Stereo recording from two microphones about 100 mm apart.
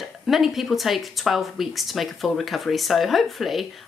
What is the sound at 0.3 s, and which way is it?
Speech, centre (ahead or behind).